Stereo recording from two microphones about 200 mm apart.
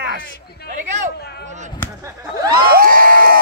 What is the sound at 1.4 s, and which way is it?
Speech, 35° right (ahead or behind).